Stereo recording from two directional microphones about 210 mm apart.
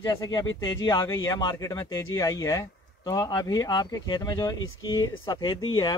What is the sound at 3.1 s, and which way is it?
Speech, 20° left (ahead or behind).